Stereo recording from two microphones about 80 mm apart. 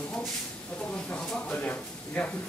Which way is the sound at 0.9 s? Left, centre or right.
Centre.